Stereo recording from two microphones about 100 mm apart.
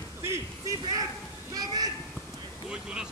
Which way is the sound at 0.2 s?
25° right (ahead or behind).